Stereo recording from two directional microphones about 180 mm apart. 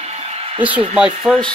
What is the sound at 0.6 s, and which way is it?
Speech, 10° right (ahead or behind).